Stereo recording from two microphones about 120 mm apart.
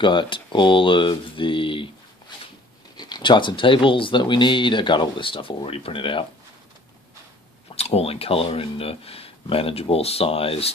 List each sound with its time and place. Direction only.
0.0 s speech: 40° left (ahead or behind)
7.7 s speech: 60° left (ahead or behind)